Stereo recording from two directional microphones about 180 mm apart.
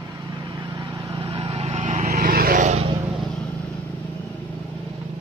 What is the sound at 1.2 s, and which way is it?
Vehicle, 30° right (ahead or behind).